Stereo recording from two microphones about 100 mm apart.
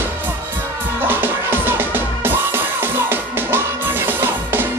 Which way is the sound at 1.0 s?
20° right (ahead or behind).